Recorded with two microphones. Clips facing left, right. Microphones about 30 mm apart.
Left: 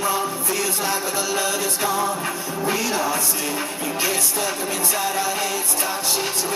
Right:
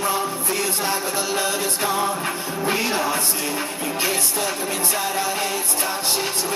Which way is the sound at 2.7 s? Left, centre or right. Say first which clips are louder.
Right 1 dB; right.